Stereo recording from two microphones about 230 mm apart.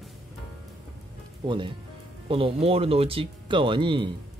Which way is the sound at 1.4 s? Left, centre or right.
Right.